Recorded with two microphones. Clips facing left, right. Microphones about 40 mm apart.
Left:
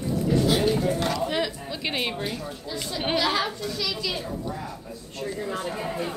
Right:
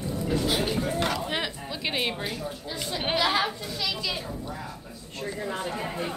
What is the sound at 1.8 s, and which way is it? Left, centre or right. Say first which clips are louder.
Speech: left 1 dB; centre.